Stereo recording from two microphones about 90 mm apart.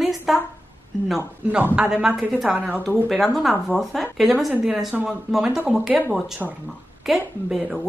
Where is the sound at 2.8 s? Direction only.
5° left (ahead or behind).